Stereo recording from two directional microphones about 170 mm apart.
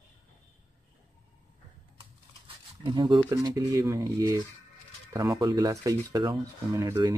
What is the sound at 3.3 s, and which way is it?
Speech, 20° right (ahead or behind).